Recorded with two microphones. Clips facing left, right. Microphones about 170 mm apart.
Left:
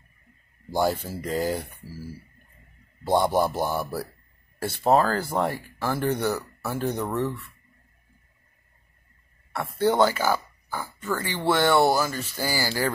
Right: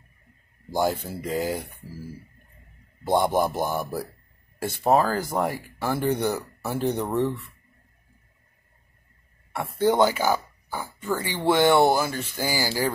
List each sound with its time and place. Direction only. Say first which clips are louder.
0.7 s speech: even; 15° right (ahead or behind)
3.2 s speech: even; 15° right (ahead or behind)
9.5 s speech: right 1 dB; 15° right (ahead or behind)